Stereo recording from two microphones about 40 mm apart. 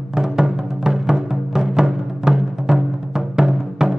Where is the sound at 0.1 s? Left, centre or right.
Centre.